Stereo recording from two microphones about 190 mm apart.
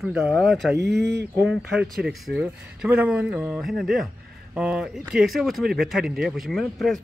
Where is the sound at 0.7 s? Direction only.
60° right (ahead or behind).